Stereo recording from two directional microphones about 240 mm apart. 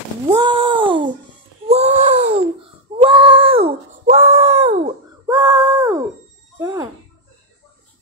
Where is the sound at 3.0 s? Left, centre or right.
Right.